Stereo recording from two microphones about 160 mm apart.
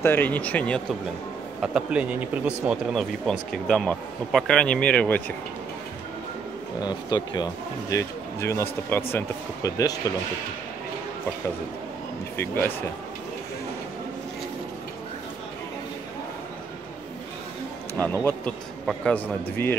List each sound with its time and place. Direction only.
0.0 s a man's voice: 10° left (ahead or behind)
1.6 s speech: 5° right (ahead or behind)
6.8 s speech: 25° left (ahead or behind)
12.4 s a man's voice: 15° left (ahead or behind)
17.9 s a man's voice: 10° left (ahead or behind)